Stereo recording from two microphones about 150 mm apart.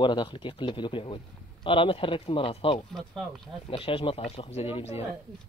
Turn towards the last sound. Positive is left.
turn(degrees=45)  # may be behind; listen again after turning